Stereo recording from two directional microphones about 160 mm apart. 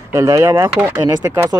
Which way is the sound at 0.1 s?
20° right (ahead or behind).